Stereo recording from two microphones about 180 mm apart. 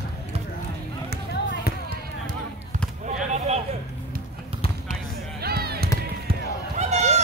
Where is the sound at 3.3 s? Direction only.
40° right (ahead or behind).